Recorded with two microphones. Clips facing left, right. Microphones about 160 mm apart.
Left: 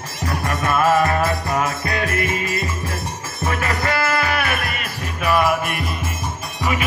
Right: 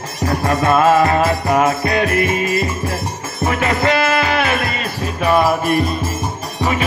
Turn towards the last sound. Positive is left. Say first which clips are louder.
# right 4 dB
turn(degrees=-30)  # may be behind; listen again after turning